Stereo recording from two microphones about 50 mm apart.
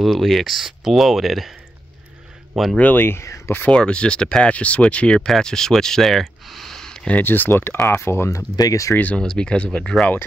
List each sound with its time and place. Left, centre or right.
0.0 s speech: centre
2.5 s speech: centre
2.8 s speech: left
3.2 s speech: left
3.7 s speech: centre
7.2 s speech: left
7.8 s speech: left
9.1 s speech: centre